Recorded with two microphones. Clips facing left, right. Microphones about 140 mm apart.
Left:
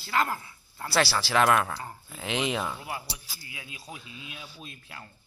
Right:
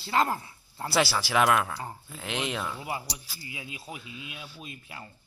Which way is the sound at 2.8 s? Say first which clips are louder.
Right 2 dB; 15° right (ahead or behind).